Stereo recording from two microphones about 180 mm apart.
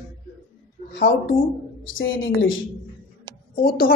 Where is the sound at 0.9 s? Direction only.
75° left (ahead or behind).